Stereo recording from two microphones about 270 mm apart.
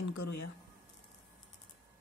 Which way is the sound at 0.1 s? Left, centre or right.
Left.